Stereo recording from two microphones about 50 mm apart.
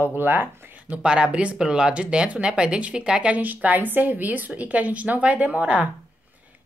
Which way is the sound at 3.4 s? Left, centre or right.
Right.